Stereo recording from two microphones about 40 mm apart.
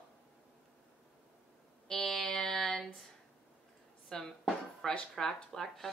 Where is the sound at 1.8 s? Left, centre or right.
Centre.